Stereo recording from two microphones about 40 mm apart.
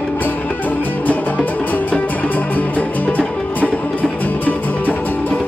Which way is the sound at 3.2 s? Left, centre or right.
Left.